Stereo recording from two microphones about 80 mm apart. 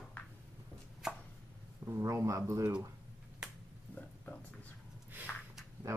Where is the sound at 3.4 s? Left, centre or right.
Centre.